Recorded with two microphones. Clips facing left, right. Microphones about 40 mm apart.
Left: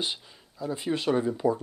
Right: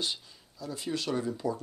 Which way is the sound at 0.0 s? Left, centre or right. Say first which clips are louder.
Left 2 dB; left.